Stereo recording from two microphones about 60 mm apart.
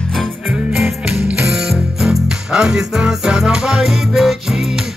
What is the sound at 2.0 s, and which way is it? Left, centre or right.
Music, centre.